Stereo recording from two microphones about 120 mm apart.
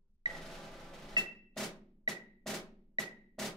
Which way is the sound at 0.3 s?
Centre (ahead or behind).